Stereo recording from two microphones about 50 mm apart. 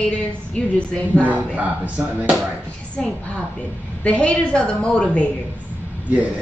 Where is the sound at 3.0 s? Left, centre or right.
Centre.